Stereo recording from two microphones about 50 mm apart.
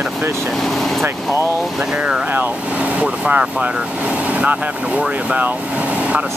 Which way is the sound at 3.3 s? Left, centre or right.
Right.